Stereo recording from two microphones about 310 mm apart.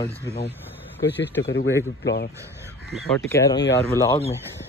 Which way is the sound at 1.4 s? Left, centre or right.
Left.